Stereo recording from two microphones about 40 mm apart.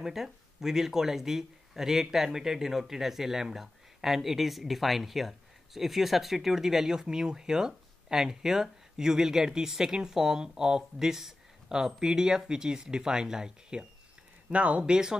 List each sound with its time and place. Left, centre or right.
0.0 s speech: centre
14.5 s speech: right